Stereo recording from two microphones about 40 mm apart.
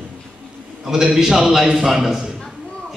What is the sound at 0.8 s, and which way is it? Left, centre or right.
A man's voice, centre.